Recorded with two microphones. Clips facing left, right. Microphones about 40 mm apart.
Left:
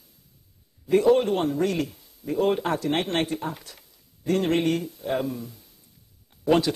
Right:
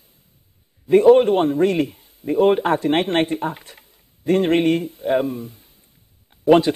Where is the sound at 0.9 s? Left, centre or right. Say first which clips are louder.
Right 7 dB; right.